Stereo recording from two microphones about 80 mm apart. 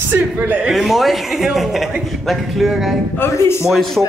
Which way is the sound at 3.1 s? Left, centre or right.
Left.